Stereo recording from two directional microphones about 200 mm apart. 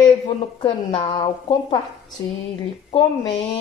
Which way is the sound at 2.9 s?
20° left (ahead or behind).